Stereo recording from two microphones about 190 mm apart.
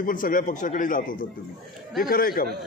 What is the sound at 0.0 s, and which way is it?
Speech, 45° left (ahead or behind).